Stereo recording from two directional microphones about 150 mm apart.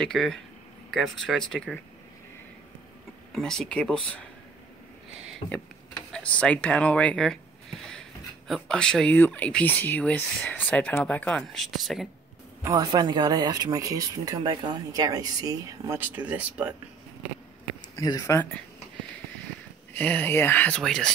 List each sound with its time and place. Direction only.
0.0 s speech: 5° left (ahead or behind)
3.3 s speech: 5° left (ahead or behind)
6.1 s speech: 5° left (ahead or behind)
8.5 s speech: 5° left (ahead or behind)
12.6 s speech: 25° right (ahead or behind)
16.0 s speech: 10° right (ahead or behind)
17.9 s speech: 25° left (ahead or behind)
19.9 s speech: 10° left (ahead or behind)